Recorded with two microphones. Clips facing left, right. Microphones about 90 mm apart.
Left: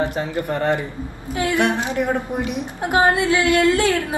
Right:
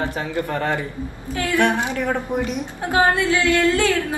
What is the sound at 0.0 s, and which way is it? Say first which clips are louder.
A woman's voice: left 2 dB; 20° left (ahead or behind).